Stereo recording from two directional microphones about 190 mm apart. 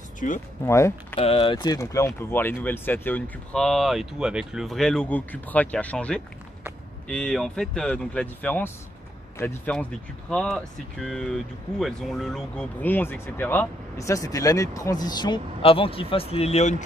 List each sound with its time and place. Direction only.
0.2 s speech: 40° left (ahead or behind)
0.7 s speech: 15° left (ahead or behind)
1.1 s speech: 30° left (ahead or behind)